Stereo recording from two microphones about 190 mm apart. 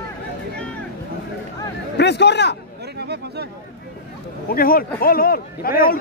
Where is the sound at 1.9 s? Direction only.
65° left (ahead or behind).